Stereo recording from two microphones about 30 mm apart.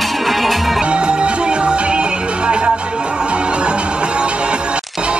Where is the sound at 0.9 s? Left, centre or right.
Right.